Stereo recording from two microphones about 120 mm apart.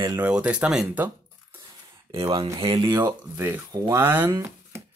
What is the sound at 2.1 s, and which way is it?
Speech, 50° right (ahead or behind).